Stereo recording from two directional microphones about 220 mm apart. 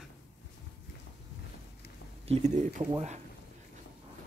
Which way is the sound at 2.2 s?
30° right (ahead or behind).